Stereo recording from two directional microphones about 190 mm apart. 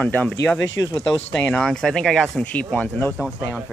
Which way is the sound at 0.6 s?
75° left (ahead or behind).